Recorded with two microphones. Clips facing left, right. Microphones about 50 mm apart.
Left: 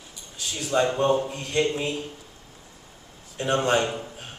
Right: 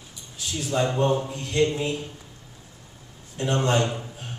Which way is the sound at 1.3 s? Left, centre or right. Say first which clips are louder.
Right 1 dB; left.